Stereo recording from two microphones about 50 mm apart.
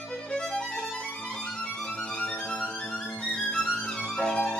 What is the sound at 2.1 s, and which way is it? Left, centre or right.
Music, left.